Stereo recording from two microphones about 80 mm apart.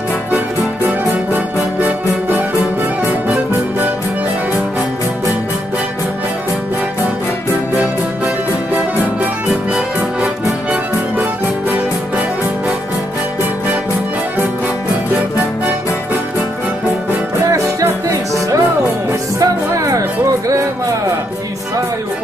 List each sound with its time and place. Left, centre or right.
1.3 s music: right
17.5 s music: right